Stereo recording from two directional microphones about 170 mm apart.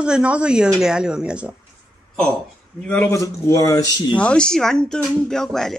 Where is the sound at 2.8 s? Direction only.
10° left (ahead or behind).